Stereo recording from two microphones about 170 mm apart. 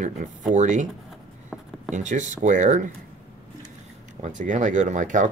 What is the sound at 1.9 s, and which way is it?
Speech, 45° right (ahead or behind).